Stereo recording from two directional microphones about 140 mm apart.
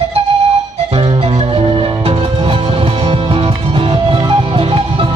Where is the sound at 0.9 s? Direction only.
40° right (ahead or behind).